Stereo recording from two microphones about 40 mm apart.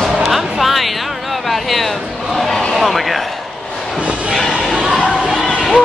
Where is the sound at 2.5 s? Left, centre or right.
Centre.